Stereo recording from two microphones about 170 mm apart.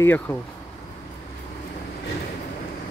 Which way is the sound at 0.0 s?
10° left (ahead or behind).